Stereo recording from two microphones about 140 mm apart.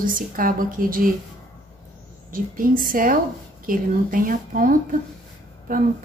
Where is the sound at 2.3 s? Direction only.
85° right.